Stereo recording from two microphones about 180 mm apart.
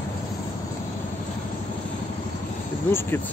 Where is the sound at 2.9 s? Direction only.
15° left (ahead or behind).